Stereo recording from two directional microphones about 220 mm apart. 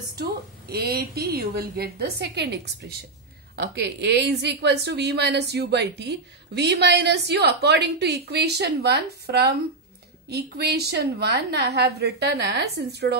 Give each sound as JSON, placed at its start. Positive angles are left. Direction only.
{"t": 0.2, "sound": "a woman's voice", "side_deg": -45}